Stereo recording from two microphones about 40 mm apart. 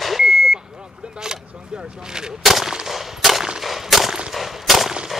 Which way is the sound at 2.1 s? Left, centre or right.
Centre.